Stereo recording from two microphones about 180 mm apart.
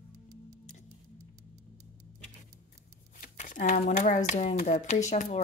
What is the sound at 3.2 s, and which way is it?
Speech, 45° left (ahead or behind).